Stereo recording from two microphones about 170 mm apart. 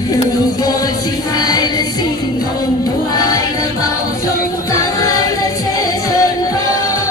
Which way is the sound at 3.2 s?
20° left (ahead or behind).